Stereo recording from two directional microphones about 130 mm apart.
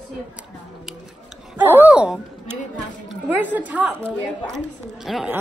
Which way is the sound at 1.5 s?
15° right (ahead or behind).